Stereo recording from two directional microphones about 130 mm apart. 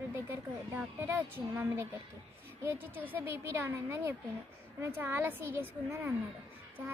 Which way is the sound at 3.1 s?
15° right (ahead or behind).